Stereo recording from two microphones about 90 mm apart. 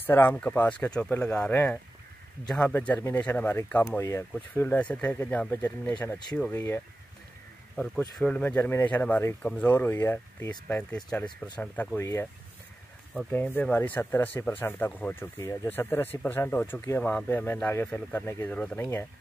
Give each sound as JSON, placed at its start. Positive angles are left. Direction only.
{"t": 0.0, "sound": "speech", "side_deg": 20}
{"t": 1.5, "sound": "speech", "side_deg": 20}
{"t": 2.4, "sound": "speech", "side_deg": 5}
{"t": 3.0, "sound": "speech", "side_deg": 25}
{"t": 4.6, "sound": "speech", "side_deg": 15}
{"t": 7.7, "sound": "speech", "side_deg": 5}
{"t": 10.7, "sound": "speech", "side_deg": 15}
{"t": 11.2, "sound": "speech", "side_deg": 55}
{"t": 11.6, "sound": "speech", "side_deg": 20}
{"t": 12.0, "sound": "speech", "side_deg": 30}
{"t": 13.3, "sound": "speech", "side_deg": 15}
{"t": 15.3, "sound": "speech", "side_deg": 35}
{"t": 18.8, "sound": "speech", "side_deg": 25}